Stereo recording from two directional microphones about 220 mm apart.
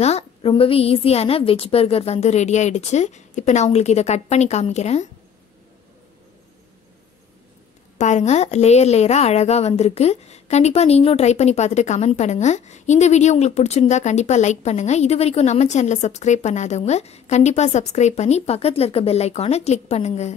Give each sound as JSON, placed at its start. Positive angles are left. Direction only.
{"t": 0.0, "sound": "a woman's voice", "side_deg": 25}
{"t": 8.0, "sound": "a woman's voice", "side_deg": 30}